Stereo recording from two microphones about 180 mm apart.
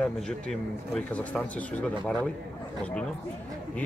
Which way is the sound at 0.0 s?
5° left (ahead or behind).